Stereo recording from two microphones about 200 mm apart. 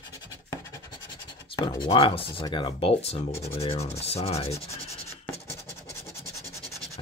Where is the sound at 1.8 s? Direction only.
25° left (ahead or behind).